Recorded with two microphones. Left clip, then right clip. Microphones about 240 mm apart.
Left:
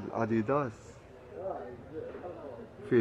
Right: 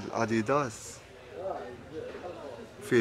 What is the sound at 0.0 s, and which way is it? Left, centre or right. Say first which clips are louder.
Speech: right 2 dB; centre.